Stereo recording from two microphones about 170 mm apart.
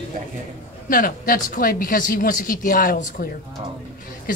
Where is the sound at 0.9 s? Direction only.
55° left (ahead or behind).